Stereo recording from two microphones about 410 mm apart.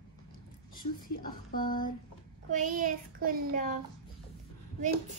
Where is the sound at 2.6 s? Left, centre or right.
Centre.